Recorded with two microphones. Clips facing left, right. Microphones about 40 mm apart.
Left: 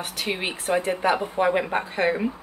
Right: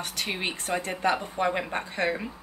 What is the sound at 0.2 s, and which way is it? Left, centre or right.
Speech, centre.